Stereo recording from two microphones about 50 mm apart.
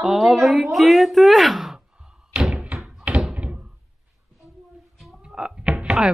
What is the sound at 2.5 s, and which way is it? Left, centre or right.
Thunk, right.